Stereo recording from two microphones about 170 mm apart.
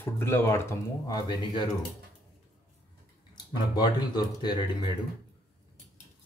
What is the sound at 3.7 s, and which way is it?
Speech, 25° left (ahead or behind).